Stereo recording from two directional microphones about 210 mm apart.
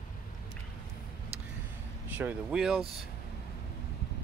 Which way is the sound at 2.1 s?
5° right (ahead or behind).